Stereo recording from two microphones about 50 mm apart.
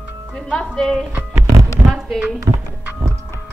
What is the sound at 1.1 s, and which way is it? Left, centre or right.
Music, right.